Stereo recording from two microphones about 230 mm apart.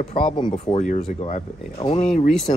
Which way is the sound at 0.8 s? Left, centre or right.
Left.